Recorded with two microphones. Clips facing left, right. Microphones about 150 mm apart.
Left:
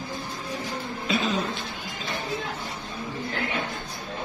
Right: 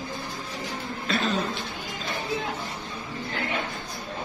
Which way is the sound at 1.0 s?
10° left (ahead or behind).